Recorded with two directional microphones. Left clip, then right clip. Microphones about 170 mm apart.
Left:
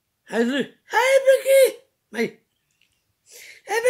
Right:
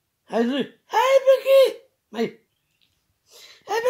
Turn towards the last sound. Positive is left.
turn(degrees=30)  # may be behind; listen again after turning